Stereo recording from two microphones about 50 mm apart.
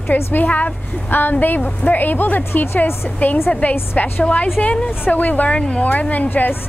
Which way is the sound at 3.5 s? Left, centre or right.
Left.